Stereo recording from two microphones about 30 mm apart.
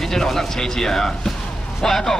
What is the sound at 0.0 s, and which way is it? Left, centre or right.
Speech, centre.